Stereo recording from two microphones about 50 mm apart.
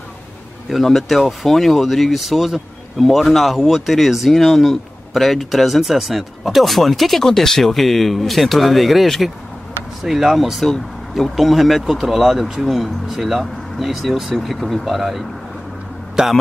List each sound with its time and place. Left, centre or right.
0.7 s speech: centre
16.2 s a man's voice: centre